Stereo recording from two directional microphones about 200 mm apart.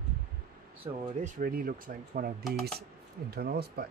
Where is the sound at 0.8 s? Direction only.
20° right (ahead or behind).